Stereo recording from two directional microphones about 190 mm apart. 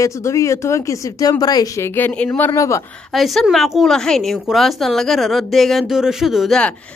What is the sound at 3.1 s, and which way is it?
A woman's voice, centre (ahead or behind).